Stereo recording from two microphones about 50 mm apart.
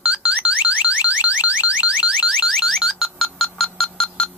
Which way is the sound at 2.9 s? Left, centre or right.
Centre.